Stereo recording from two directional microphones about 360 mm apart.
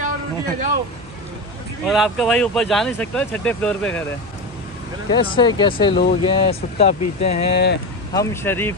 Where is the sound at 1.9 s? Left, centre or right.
Centre.